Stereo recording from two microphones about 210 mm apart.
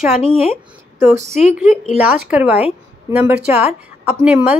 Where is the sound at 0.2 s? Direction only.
25° left (ahead or behind).